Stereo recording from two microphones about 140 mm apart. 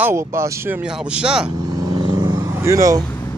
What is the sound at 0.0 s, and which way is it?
Speech, 20° right (ahead or behind).